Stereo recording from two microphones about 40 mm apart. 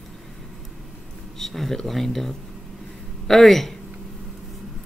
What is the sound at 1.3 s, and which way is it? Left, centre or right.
Speech, centre.